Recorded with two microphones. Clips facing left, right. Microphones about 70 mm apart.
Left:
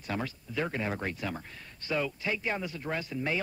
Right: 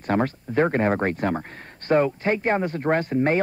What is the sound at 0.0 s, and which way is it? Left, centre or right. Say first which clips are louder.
Speech: right 12 dB; right.